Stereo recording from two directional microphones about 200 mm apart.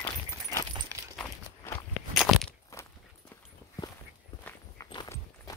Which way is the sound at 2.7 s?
15° left (ahead or behind).